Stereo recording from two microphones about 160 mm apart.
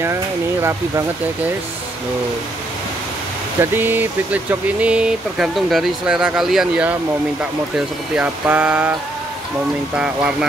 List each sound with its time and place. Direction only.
0.0 s speech: 15° right (ahead or behind)
3.7 s speech: 10° right (ahead or behind)
9.9 s speech: 5° right (ahead or behind)